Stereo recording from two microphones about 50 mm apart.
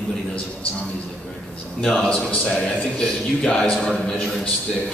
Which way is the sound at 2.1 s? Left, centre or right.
Left.